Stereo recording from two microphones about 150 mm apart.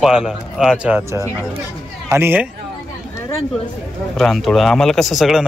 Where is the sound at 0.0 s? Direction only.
5° right (ahead or behind).